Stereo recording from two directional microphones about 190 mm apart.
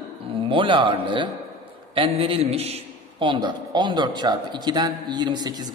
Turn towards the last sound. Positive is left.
turn(degrees=-20)  # may be behind; listen again after turning